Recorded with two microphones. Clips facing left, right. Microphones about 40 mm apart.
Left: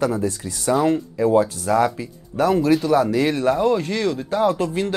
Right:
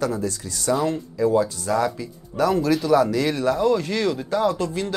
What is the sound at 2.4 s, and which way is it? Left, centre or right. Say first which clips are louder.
Speech: left 3 dB; centre.